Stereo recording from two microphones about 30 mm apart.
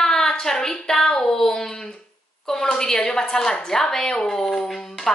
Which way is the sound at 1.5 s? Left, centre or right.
Left.